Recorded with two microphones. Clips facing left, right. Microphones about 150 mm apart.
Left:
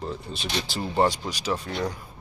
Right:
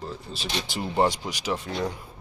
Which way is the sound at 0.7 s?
15° right (ahead or behind).